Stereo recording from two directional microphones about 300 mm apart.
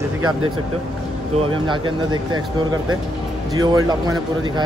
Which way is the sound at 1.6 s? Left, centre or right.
Centre.